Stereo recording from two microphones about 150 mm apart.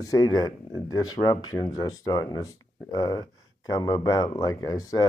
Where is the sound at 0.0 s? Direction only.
25° left (ahead or behind).